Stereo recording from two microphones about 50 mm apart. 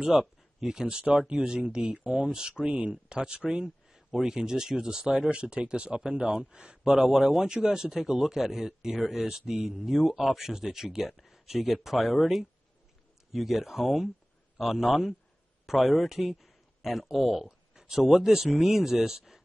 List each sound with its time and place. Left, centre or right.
0.2 s speech: centre